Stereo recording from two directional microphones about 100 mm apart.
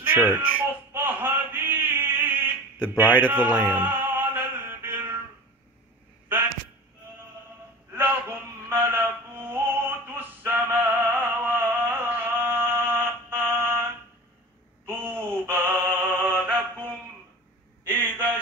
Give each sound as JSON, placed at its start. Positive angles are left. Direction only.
{"t": 0.0, "sound": "baby cry", "side_deg": -15}
{"t": 0.4, "sound": "a sound", "side_deg": -15}
{"t": 3.3, "sound": "music", "side_deg": -15}
{"t": 7.9, "sound": "music", "side_deg": -20}
{"t": 14.9, "sound": "mantra", "side_deg": -20}
{"t": 17.8, "sound": "a sound", "side_deg": -20}